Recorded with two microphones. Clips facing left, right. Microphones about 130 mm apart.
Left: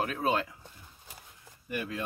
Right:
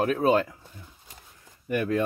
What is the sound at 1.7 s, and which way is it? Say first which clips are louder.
Speech: right 10 dB; 55° right (ahead or behind).